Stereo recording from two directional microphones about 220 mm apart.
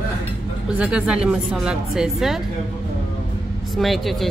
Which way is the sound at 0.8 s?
5° right (ahead or behind).